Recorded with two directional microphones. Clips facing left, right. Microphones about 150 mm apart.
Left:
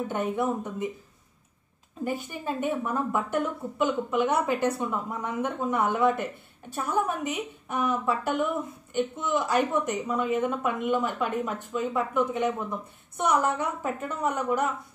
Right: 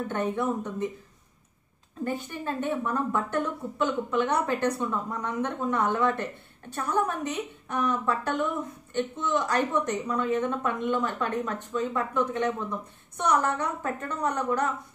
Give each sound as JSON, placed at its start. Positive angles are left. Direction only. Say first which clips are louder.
{"t": 0.1, "sound": "a woman's voice", "louder": "even", "side_deg": 10}
{"t": 2.2, "sound": "a woman's voice", "louder": "left 1 dB", "side_deg": 10}